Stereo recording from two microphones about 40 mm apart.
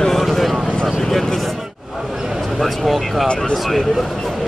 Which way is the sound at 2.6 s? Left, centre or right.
Centre.